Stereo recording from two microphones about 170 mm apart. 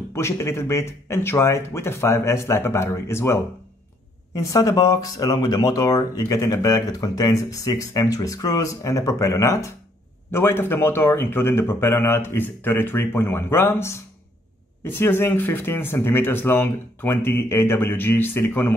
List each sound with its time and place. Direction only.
0.1 s speech: 15° left (ahead or behind)
4.4 s speech: 20° left (ahead or behind)